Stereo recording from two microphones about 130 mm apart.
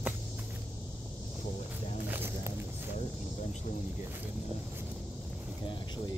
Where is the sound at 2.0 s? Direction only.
15° right (ahead or behind).